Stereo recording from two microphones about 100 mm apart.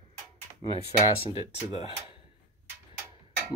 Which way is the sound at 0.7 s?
85° left.